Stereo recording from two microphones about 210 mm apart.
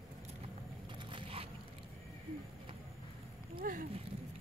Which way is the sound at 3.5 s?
40° right (ahead or behind).